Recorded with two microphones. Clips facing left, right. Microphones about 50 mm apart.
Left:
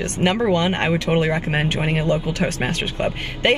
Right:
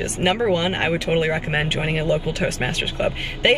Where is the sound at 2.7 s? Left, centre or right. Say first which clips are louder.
Even; centre.